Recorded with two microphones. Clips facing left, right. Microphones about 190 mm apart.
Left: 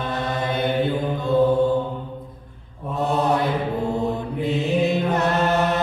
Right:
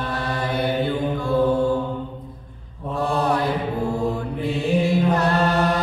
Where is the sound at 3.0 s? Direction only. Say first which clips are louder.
Left 1 dB; 20° left (ahead or behind).